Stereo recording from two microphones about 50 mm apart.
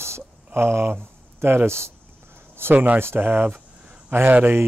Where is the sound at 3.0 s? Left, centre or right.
Right.